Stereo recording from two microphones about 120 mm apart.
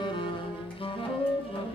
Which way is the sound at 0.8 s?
50° left (ahead or behind).